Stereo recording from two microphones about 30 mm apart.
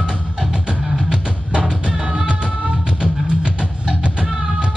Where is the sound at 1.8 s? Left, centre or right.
Right.